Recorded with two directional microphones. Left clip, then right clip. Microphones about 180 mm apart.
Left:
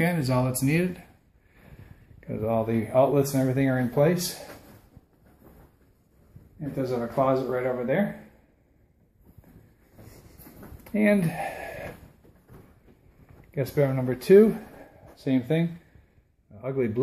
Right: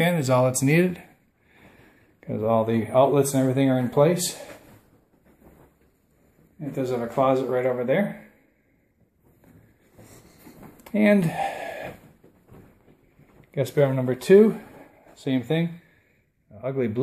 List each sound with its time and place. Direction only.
0.3 s speech: 35° right (ahead or behind)
2.1 s speech: 30° right (ahead or behind)
6.6 s speech: 25° right (ahead or behind)
10.8 s a sound: 25° right (ahead or behind)
13.5 s speech: 25° right (ahead or behind)